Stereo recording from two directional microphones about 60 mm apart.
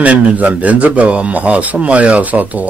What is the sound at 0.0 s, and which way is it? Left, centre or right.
A man's voice, right.